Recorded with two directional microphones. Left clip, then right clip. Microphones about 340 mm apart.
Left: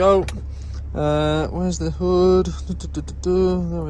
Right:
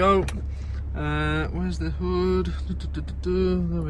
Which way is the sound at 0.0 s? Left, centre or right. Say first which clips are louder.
Left 5 dB; centre.